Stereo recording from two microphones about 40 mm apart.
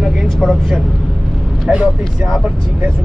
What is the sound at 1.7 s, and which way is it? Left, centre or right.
Speech, right.